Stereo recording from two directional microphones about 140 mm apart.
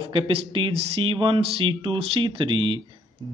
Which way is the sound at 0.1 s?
40° right (ahead or behind).